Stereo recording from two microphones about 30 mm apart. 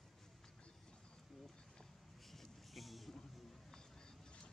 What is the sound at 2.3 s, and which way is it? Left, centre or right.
Music, centre.